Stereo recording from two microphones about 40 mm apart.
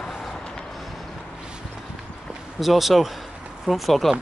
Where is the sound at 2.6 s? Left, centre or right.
Centre.